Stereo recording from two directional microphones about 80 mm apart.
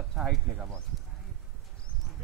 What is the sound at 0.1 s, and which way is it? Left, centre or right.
Speech, centre.